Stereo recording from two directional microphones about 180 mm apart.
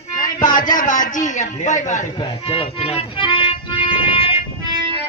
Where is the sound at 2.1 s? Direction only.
30° left (ahead or behind).